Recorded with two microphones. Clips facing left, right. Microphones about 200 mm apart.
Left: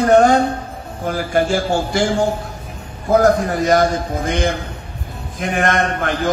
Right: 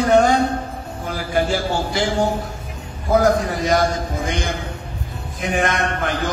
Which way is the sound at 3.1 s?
50° left (ahead or behind).